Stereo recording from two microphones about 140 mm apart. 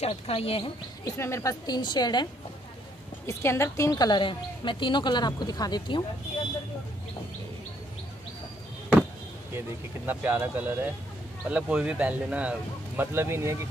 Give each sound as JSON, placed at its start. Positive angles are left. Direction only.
{"t": 0.0, "sound": "speech", "side_deg": 45}
{"t": 1.0, "sound": "a woman's voice", "side_deg": 20}
{"t": 3.3, "sound": "a woman's voice", "side_deg": 20}
{"t": 10.0, "sound": "speech", "side_deg": -15}